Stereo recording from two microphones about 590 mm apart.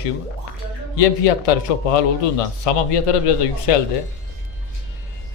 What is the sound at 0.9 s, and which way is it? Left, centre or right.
A man's voice, left.